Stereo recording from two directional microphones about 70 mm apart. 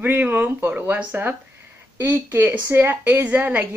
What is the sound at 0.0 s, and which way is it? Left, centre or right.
Speech, right.